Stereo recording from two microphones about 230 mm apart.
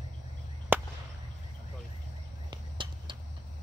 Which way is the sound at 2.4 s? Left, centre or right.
Right.